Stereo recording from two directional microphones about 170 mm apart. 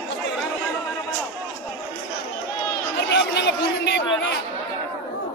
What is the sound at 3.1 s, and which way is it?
Chatter, 90° left.